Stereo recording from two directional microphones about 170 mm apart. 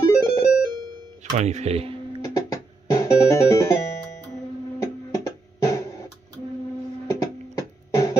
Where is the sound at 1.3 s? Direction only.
40° right (ahead or behind).